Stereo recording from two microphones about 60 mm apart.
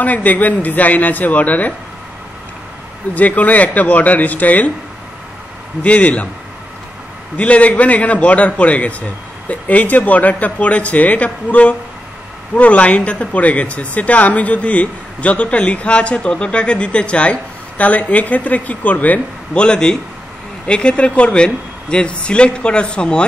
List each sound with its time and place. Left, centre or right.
0.0 s speech: left
3.2 s speech: left
5.8 s speech: left
7.3 s speech: left
19.6 s speech: centre